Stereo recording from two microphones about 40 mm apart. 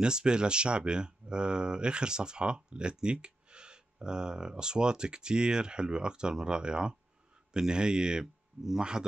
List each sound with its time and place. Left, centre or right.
0.0 s a man's voice: right